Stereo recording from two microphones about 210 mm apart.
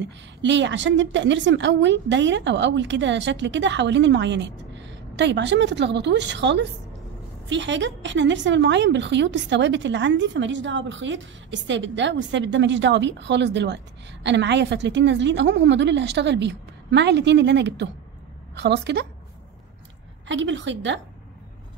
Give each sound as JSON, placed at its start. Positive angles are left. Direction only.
{"t": 0.0, "sound": "a woman's voice", "side_deg": -60}
{"t": 20.2, "sound": "a woman's voice", "side_deg": -60}